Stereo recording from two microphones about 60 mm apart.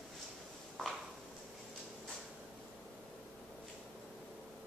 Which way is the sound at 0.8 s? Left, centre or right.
Centre.